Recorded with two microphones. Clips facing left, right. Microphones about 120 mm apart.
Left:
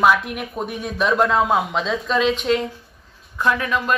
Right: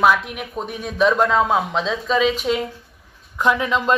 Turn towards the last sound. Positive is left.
turn(degrees=-20)  # may be behind; listen again after turning